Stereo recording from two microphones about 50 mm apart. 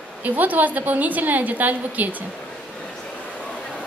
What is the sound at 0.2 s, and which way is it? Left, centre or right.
A woman's voice, right.